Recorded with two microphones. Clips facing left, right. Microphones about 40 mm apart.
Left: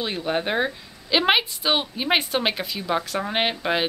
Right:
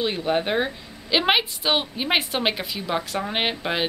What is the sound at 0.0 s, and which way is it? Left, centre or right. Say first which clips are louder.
A woman's voice: right 2 dB; centre.